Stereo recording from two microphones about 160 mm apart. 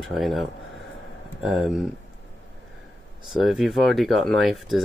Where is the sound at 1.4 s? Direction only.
Centre (ahead or behind).